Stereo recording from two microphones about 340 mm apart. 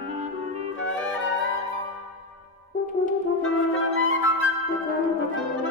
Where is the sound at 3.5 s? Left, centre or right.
Left.